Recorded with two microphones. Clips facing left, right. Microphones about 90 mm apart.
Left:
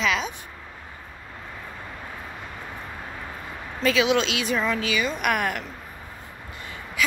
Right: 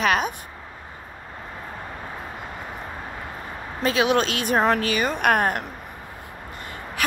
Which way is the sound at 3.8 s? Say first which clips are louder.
Right 1 dB; 45° right (ahead or behind).